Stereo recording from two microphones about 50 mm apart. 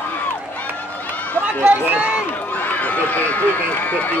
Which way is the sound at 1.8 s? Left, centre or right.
Right.